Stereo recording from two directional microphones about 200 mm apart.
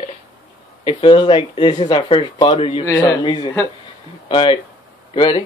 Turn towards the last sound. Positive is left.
turn(degrees=25)  # may be behind; listen again after turning